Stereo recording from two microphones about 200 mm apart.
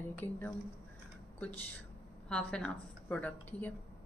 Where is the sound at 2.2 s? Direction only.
5° left (ahead or behind).